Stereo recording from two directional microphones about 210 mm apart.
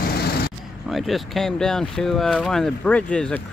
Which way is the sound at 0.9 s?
Centre (ahead or behind).